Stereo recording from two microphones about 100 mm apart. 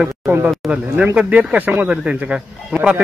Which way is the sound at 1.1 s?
10° right (ahead or behind).